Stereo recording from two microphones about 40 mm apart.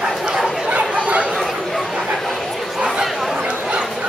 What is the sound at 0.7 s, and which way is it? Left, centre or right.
Dog, right.